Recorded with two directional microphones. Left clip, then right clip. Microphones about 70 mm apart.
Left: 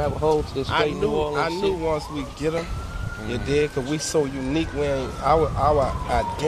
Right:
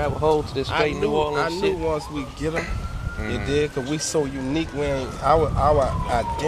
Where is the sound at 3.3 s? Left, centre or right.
Centre.